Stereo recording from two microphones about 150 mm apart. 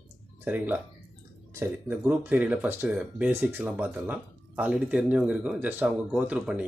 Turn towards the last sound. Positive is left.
turn(degrees=-10)  # may be behind; listen again after turning